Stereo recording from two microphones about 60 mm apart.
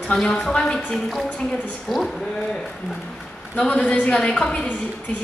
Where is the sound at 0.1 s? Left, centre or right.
Centre.